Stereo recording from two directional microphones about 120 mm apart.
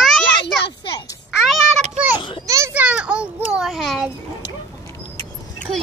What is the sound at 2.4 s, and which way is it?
Children playing, 25° right (ahead or behind).